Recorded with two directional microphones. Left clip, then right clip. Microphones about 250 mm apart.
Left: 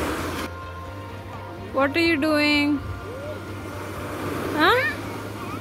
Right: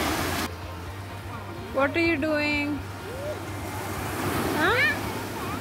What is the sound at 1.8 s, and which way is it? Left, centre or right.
Speech, centre.